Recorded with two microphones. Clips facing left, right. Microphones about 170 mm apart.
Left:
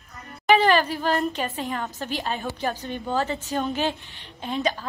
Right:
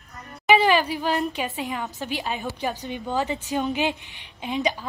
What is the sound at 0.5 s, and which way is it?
A woman's voice, 10° right (ahead or behind).